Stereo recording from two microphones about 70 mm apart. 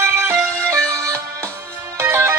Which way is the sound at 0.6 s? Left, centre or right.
Right.